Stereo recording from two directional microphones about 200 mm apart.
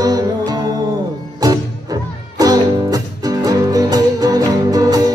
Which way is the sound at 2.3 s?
20° right (ahead or behind).